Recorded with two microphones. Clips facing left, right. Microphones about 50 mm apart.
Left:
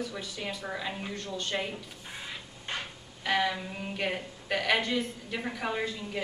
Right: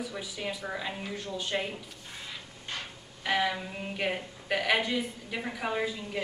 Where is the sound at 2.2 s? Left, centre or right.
Left.